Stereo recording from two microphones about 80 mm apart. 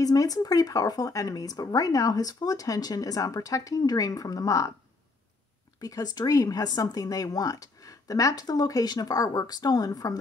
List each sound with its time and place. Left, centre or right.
0.0 s speech: left
5.8 s speech: left